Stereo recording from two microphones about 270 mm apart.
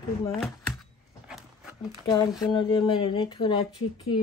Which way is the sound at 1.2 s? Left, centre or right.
Centre.